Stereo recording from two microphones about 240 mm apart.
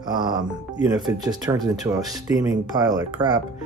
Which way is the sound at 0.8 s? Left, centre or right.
Centre.